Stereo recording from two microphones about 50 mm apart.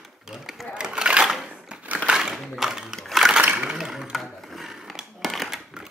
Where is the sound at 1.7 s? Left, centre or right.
Right.